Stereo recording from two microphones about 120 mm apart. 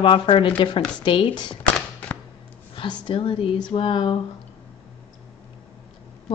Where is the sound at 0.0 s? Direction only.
45° left (ahead or behind).